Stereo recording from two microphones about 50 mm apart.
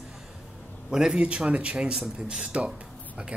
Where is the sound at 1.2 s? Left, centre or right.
Right.